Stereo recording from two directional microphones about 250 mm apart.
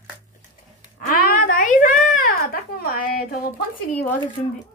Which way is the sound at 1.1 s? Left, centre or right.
Left.